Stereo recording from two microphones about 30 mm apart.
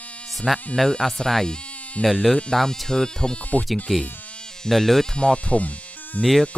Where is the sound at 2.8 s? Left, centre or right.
Left.